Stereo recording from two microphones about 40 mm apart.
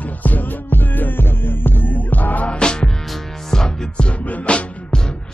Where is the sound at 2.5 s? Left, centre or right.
Left.